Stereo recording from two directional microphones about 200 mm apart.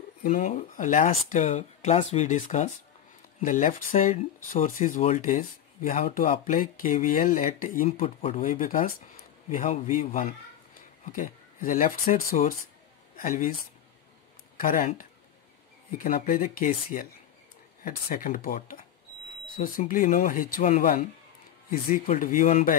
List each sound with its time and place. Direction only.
0.2 s a man's voice: 45° left (ahead or behind)
14.6 s speech: 40° left (ahead or behind)